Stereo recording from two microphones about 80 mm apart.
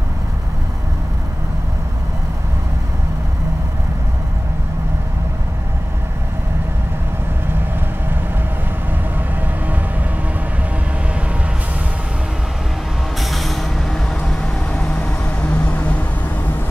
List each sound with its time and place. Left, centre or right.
13.2 s vehicle: centre
14.7 s vehicle: centre
15.5 s a sound: centre